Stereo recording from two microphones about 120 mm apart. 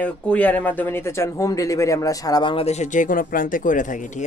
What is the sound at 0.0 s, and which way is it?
Speech, 10° left (ahead or behind).